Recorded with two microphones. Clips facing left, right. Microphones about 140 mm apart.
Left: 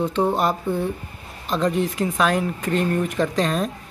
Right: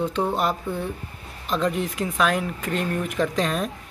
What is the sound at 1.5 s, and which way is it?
Speech, centre (ahead or behind).